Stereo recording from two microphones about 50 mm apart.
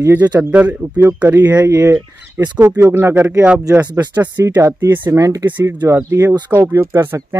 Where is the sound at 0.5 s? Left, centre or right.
Right.